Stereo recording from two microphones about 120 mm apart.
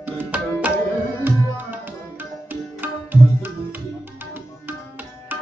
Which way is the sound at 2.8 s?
15° right (ahead or behind).